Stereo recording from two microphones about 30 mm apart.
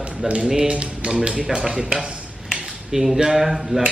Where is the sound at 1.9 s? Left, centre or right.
Centre.